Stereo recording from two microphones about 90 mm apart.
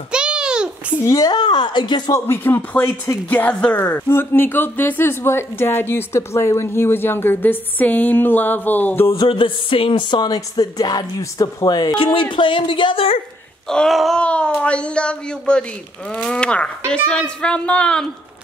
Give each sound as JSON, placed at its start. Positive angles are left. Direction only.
{"t": 0.1, "sound": "babbling", "side_deg": -10}
{"t": 1.0, "sound": "speech", "side_deg": 40}
{"t": 1.3, "sound": "speech", "side_deg": 55}
{"t": 2.1, "sound": "speech", "side_deg": 25}
{"t": 9.3, "sound": "music", "side_deg": 80}
{"t": 11.9, "sound": "a woman's voice", "side_deg": 75}
{"t": 13.7, "sound": "wail", "side_deg": 5}
{"t": 14.2, "sound": "speech", "side_deg": 15}